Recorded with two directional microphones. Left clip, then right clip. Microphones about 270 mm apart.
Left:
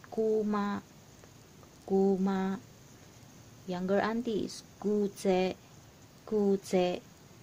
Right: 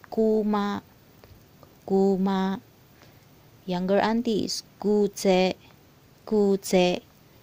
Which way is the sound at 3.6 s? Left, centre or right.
Right.